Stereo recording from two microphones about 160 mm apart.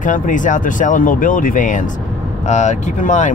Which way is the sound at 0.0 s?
55° left (ahead or behind).